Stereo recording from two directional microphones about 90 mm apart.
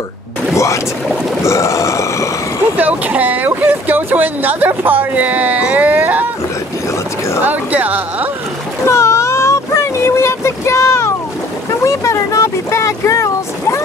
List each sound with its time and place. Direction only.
1.4 s burping: 35° left (ahead or behind)
2.8 s speech: 15° right (ahead or behind)
7.4 s speech: 20° right (ahead or behind)
8.8 s a sound: 30° left (ahead or behind)
11.8 s speech: 35° left (ahead or behind)